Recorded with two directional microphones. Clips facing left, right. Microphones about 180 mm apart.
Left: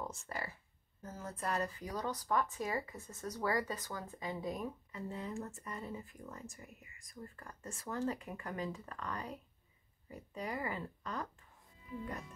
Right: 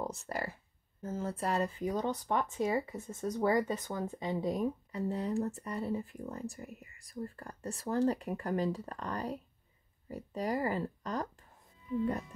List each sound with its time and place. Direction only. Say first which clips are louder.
0.0 s speech: right 6 dB; 40° right (ahead or behind)
1.0 s speech: right 6 dB; 30° right (ahead or behind)
4.5 s speech: right 8 dB; 35° right (ahead or behind)